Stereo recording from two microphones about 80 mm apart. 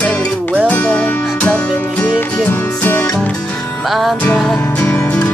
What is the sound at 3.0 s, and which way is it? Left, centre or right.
Music, centre.